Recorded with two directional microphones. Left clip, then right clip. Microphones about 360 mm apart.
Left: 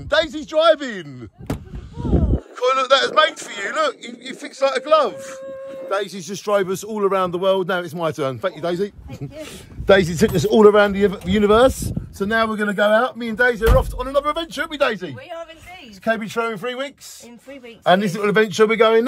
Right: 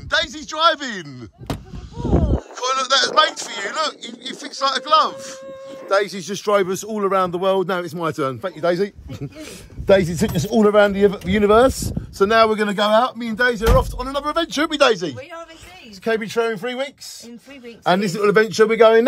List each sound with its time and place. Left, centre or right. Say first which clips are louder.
0.1 s a man's voice: left 3 dB; centre
8.6 s a man's voice: right 3 dB; centre
14.5 s speech: right 4 dB; right
16.0 s a man's voice: right 1 dB; centre